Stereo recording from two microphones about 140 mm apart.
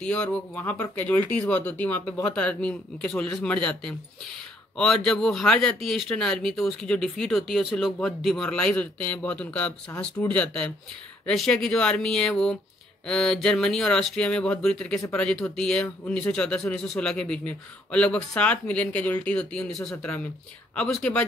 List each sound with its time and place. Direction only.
0.0 s speech: 10° left (ahead or behind)